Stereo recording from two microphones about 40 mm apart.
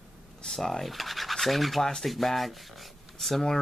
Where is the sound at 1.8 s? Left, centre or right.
Centre.